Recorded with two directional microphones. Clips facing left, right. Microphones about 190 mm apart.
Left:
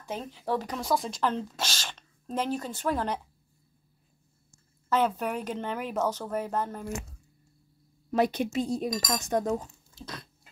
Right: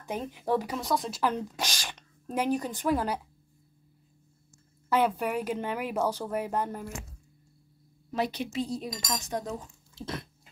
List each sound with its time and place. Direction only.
0.0 s speech: 15° right (ahead or behind)
0.7 s speech: centre (ahead or behind)
1.2 s speech: 15° right (ahead or behind)
4.8 s speech: 10° right (ahead or behind)
8.1 s speech: 50° left (ahead or behind)